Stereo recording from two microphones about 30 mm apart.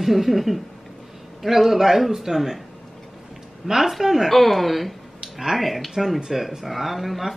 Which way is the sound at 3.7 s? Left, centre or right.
Centre.